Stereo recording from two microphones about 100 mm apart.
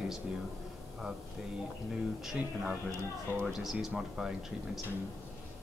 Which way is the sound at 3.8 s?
5° right (ahead or behind).